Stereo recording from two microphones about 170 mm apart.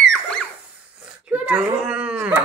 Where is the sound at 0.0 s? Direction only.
5° left (ahead or behind).